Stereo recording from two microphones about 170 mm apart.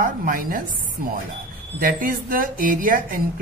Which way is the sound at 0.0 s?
55° right (ahead or behind).